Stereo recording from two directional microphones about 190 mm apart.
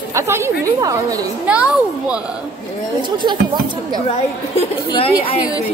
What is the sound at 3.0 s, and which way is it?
Speech, 25° right (ahead or behind).